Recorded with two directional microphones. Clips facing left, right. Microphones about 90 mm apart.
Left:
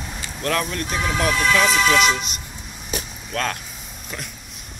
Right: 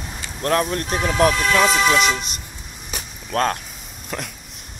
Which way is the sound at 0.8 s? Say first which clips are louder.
Right 5 dB; 40° right (ahead or behind).